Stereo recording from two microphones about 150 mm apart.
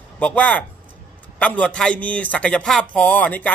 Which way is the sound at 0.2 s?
10° left (ahead or behind).